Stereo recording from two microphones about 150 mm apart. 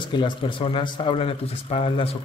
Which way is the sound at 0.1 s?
30° left (ahead or behind).